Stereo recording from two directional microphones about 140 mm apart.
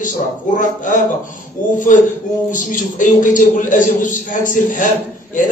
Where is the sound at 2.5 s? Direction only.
65° left (ahead or behind).